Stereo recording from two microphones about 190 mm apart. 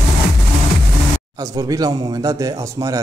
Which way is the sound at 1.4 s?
20° right (ahead or behind).